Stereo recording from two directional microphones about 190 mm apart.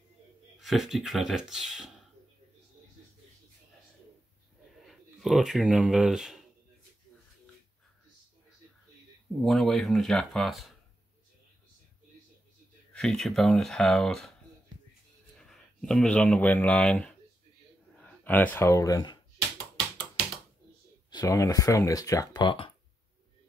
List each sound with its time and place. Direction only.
0.6 s speech: centre (ahead or behind)
4.8 s speech: centre (ahead or behind)
9.4 s speech: centre (ahead or behind)
12.9 s speech: 5° left (ahead or behind)
15.3 s speech: 5° left (ahead or behind); by 19.1 s 20° left (ahead or behind)
21.1 s speech: 20° left (ahead or behind)